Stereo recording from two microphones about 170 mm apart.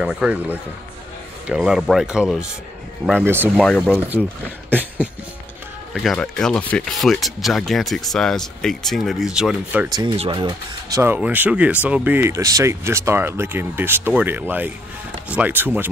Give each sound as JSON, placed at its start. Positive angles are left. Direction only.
{"t": 0.0, "sound": "speech", "side_deg": -5}
{"t": 3.5, "sound": "speech", "side_deg": 5}
{"t": 4.6, "sound": "a sound", "side_deg": -10}
{"t": 5.9, "sound": "speech", "side_deg": 5}
{"t": 10.1, "sound": "speech", "side_deg": -30}
{"t": 11.0, "sound": "speech", "side_deg": -10}